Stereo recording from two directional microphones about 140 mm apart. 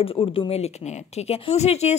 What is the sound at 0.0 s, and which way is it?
Speech, 40° left (ahead or behind).